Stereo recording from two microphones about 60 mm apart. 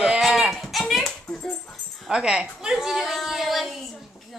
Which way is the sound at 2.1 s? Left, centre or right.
Centre.